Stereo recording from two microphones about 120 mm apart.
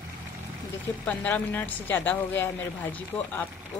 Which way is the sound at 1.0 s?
15° left (ahead or behind).